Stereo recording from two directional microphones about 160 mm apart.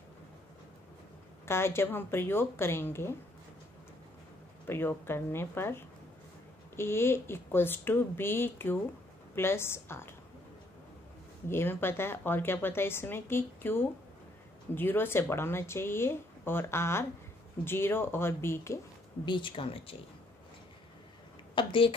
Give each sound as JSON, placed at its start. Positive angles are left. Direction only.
{"t": 1.4, "sound": "a woman's voice", "side_deg": 15}
{"t": 4.6, "sound": "a woman's voice", "side_deg": 15}
{"t": 11.4, "sound": "a woman's voice", "side_deg": 15}
{"t": 19.2, "sound": "speech", "side_deg": 30}
{"t": 21.5, "sound": "speech", "side_deg": 35}